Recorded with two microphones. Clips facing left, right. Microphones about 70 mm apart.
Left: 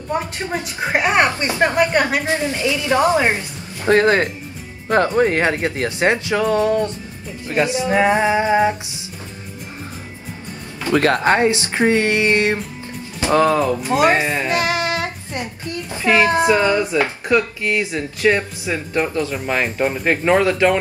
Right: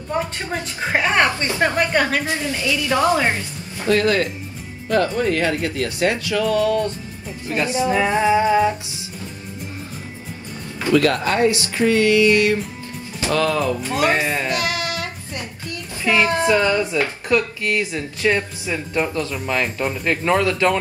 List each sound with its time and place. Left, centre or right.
0.5 s a woman's voice: centre
2.2 s speech: left
10.9 s speech: left
14.5 s child singing: left
19.3 s speech: left